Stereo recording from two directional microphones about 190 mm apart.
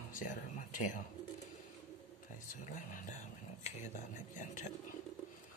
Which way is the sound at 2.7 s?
40° left (ahead or behind).